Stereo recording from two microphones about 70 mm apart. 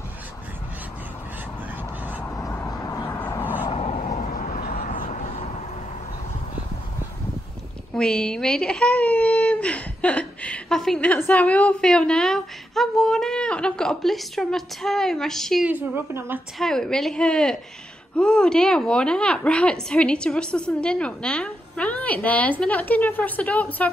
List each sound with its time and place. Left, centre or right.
2.7 s a sound: left
7.9 s speech: centre
11.1 s a woman's voice: left
11.8 s a woman's voice: centre
15.6 s a woman's voice: right
16.5 s a woman's voice: centre; by 23.9 s left